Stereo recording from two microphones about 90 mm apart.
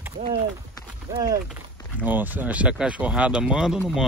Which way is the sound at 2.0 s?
20° right (ahead or behind).